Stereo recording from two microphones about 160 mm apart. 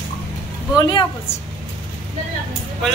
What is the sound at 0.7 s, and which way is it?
Speech, 25° left (ahead or behind).